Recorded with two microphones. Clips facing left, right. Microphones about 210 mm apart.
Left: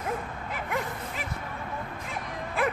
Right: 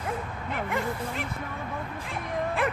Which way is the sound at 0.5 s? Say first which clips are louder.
Right 3 dB; centre (ahead or behind).